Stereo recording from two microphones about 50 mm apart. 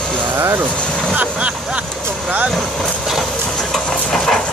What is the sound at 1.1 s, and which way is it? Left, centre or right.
Speech, right.